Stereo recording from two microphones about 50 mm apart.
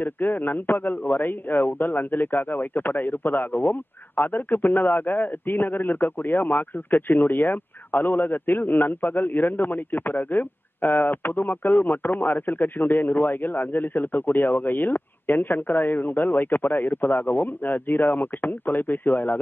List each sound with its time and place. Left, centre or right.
0.0 s a man's voice: left